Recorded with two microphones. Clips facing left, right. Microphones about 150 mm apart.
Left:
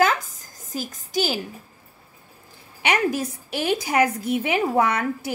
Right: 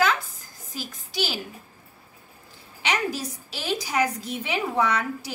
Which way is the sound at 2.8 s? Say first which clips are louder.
Left 5 dB; 55° left (ahead or behind).